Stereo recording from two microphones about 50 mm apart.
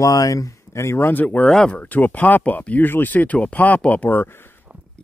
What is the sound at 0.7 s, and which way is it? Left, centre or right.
Speech, left.